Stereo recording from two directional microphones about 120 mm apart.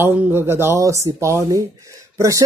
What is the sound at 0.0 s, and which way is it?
Speech, 15° right (ahead or behind).